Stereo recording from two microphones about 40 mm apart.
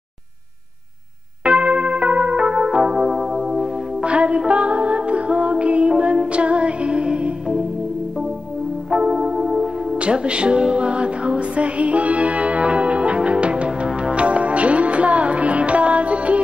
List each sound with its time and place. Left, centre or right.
1.4 s music: right
2.8 s music: centre
4.0 s music: right
9.0 s music: right
9.5 s music: centre
9.9 s music: right